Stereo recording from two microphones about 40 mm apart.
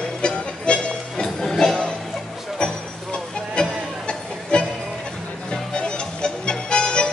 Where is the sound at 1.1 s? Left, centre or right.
Centre.